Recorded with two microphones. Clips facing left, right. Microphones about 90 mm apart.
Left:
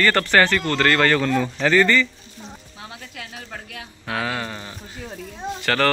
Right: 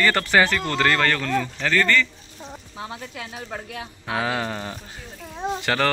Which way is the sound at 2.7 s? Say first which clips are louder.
Right 7 dB; 30° right (ahead or behind).